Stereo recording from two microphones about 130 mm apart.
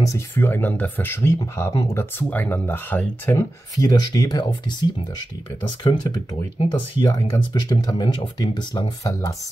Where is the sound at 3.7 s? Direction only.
30° left (ahead or behind).